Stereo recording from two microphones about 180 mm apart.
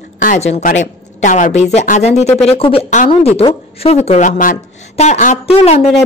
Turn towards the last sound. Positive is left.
turn(degrees=35)  # may be behind; listen again after turning